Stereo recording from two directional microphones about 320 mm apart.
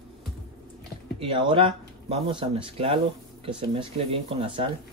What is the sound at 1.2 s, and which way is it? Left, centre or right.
Speech, centre.